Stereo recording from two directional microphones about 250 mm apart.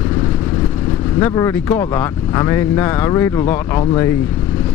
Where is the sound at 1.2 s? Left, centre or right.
Centre.